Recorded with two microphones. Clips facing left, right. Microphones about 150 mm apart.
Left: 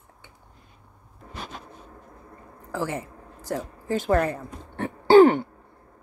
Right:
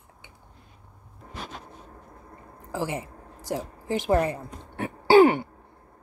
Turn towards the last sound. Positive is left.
turn(degrees=-10)  # may be behind; listen again after turning